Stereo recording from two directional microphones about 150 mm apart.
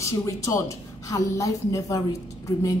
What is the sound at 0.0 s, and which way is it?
A woman's voice, 20° left (ahead or behind).